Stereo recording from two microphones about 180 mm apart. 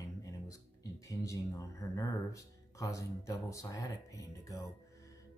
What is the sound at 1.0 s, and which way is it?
Speech, 20° left (ahead or behind).